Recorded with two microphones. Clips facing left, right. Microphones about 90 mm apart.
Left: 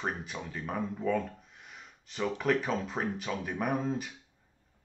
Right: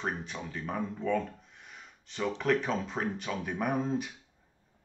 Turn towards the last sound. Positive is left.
turn(degrees=0)  # may be behind; listen again after turning